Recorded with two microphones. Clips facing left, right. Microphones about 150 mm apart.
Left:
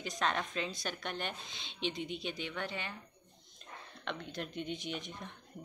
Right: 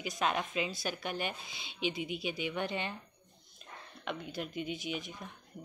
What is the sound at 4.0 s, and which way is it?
A woman's voice, 5° right (ahead or behind).